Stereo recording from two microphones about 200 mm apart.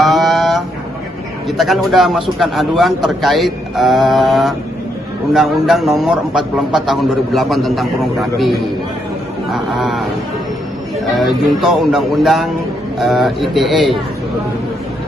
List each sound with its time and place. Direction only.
0.0 s a sound: centre (ahead or behind)
1.6 s a man's voice: centre (ahead or behind)
11.1 s a man's voice: centre (ahead or behind)